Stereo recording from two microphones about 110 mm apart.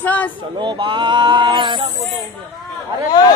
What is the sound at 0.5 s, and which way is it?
Speech, 45° right (ahead or behind).